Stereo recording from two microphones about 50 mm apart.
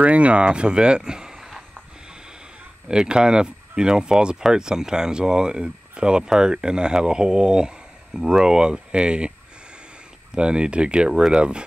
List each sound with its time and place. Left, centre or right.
0.0 s speech: right; by 1.6 s centre
2.9 s speech: centre
10.3 s speech: centre